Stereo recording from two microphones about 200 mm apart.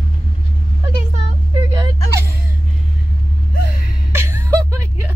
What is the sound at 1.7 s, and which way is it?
Whimper, 20° right (ahead or behind).